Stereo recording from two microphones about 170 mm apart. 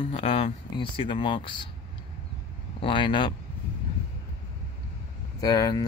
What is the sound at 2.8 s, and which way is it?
Speech, 30° left (ahead or behind).